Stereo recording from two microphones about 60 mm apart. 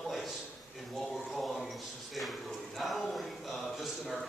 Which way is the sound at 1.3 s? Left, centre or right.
Centre.